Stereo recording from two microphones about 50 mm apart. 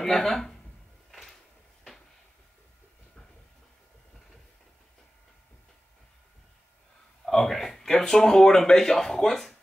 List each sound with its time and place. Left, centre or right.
0.0 s speech: centre
7.2 s speech: centre